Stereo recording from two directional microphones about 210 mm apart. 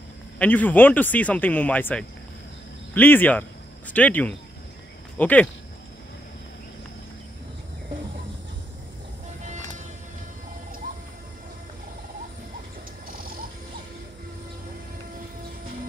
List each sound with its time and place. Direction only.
0.4 s speech: 10° left (ahead or behind)
9.4 s music: 35° right (ahead or behind)
13.1 s frog: 45° right (ahead or behind)